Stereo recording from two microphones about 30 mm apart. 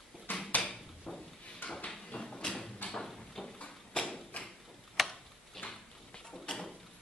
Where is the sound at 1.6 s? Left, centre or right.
Left.